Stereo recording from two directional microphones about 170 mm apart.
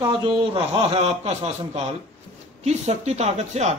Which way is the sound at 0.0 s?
25° right (ahead or behind).